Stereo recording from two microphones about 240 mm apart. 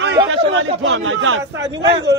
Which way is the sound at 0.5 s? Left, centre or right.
Right.